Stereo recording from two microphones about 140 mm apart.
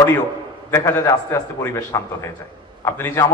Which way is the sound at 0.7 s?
20° left (ahead or behind).